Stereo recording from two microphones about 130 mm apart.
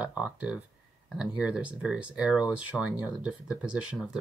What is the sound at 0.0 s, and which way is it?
Speech, 10° right (ahead or behind).